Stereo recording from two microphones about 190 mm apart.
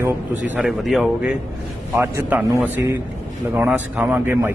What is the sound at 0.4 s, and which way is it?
A man's voice, centre (ahead or behind).